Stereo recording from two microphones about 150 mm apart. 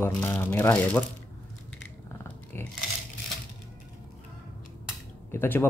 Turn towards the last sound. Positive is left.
turn(degrees=15)  # may be behind; listen again after turning